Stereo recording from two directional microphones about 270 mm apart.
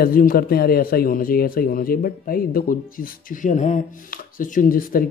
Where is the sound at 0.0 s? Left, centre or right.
Left.